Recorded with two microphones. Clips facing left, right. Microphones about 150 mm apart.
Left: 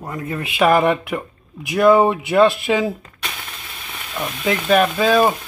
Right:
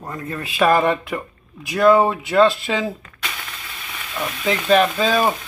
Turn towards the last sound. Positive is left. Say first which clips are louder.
# left 3 dB
turn(degrees=10)  # may be behind; listen again after turning